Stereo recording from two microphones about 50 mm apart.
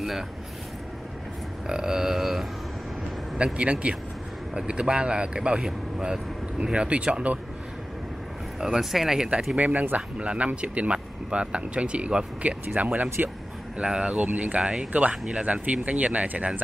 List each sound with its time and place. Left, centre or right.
1.7 s speech: centre
3.3 s speech: right
8.5 s speech: centre
9.6 s speech: right
13.7 s speech: centre
14.2 s speech: right
14.6 s speech: centre
14.9 s speech: right